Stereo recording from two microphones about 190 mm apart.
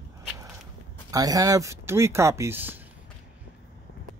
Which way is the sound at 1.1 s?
20° right (ahead or behind).